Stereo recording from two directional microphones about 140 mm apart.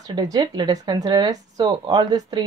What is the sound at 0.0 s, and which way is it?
A woman's voice, 25° right (ahead or behind).